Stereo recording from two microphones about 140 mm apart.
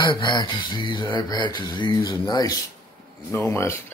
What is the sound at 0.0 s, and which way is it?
Speech, 35° left (ahead or behind).